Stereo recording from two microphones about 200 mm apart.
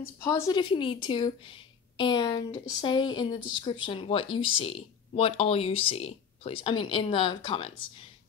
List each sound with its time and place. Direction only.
0.2 s speech: 15° left (ahead or behind)